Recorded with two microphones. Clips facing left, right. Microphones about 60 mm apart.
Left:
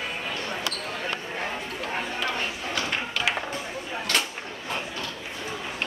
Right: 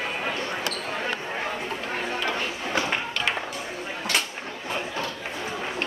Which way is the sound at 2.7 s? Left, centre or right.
Right.